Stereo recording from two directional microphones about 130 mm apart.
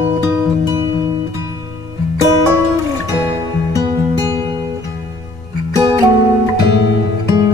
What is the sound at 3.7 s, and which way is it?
Music, 30° right (ahead or behind).